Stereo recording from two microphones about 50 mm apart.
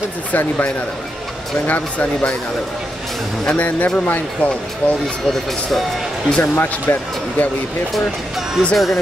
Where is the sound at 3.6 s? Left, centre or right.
Left.